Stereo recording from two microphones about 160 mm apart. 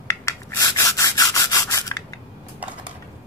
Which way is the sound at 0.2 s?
20° left (ahead or behind).